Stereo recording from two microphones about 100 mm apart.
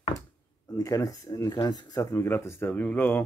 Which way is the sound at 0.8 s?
30° left (ahead or behind).